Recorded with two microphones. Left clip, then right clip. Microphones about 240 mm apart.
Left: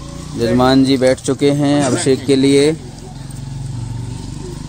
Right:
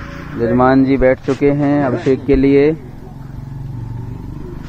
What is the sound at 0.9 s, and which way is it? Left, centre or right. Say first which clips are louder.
Speech: right 1 dB; centre.